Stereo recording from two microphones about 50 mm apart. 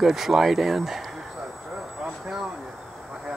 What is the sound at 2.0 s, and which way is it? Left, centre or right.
Vehicle, centre.